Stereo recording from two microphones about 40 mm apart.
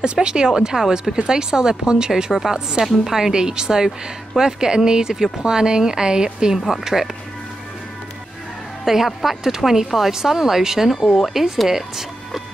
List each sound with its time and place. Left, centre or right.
0.0 s a woman's voice: right
6.7 s a woman's voice: centre
8.8 s a woman's voice: centre